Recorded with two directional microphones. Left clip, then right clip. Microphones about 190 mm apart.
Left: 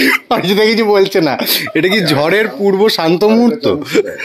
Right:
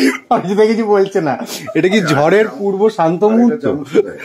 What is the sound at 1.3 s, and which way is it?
Speech, 10° left (ahead or behind).